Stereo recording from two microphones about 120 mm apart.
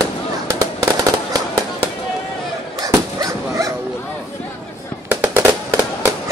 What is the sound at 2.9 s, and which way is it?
Dog, 30° right (ahead or behind).